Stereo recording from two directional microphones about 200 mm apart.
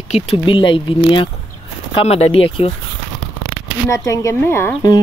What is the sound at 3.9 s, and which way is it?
Speech, 15° left (ahead or behind).